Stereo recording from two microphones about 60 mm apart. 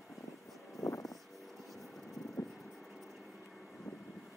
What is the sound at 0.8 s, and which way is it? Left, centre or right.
Vehicle, left.